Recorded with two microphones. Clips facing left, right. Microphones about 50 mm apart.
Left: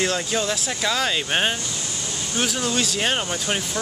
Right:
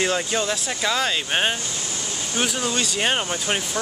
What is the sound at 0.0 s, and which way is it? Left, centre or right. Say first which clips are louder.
Speech: right 1 dB; centre.